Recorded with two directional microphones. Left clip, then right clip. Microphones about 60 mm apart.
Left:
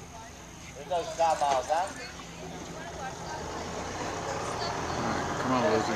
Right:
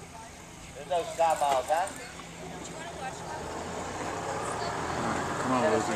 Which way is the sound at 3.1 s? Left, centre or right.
Left.